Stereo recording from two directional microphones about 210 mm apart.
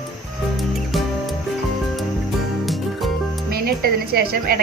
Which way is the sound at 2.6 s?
Centre (ahead or behind).